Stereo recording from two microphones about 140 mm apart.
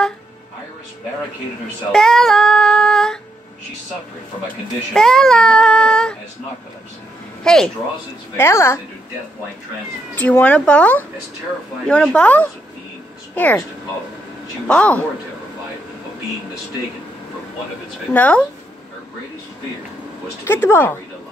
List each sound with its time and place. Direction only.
1.9 s child singing: 5° left (ahead or behind)
4.9 s child singing: 5° left (ahead or behind)
7.4 s child singing: 5° left (ahead or behind)
8.4 s a woman's voice: 20° left (ahead or behind)
10.1 s speech: 10° left (ahead or behind)
14.7 s speech: 10° left (ahead or behind)
18.1 s speech: 10° left (ahead or behind)
20.4 s speech: 15° left (ahead or behind)